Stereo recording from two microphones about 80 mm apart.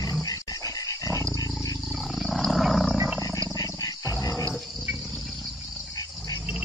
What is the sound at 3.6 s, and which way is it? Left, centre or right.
Wild animals, left.